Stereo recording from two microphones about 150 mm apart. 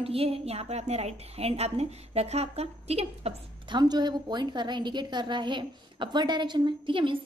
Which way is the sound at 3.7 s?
30° right (ahead or behind).